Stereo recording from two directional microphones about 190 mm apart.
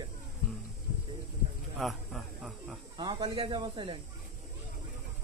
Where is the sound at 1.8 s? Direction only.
Centre (ahead or behind).